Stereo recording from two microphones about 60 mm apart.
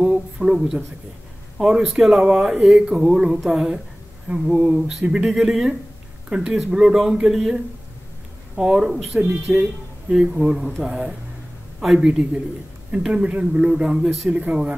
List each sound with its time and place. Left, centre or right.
0.0 s a sound: centre
1.6 s speech: centre
1.9 s speech: centre
4.7 s a man's voice: centre